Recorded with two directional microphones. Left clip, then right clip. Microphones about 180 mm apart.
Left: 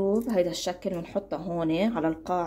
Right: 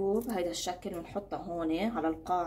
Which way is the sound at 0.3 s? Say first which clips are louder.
Left 7 dB; 35° left (ahead or behind).